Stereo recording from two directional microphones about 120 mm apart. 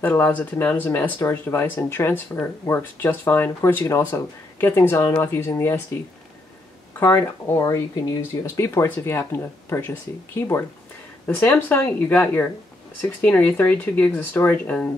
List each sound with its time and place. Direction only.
0.0 s speech: 15° left (ahead or behind)
7.0 s speech: 20° left (ahead or behind)